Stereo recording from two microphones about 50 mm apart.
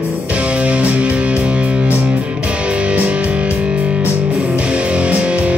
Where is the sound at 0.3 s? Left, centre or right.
Right.